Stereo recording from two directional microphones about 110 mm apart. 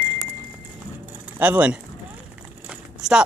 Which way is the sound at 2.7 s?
5° right (ahead or behind).